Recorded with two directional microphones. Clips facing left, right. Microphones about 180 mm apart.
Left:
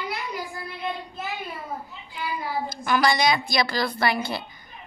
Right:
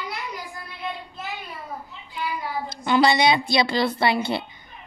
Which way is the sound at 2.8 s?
25° right (ahead or behind).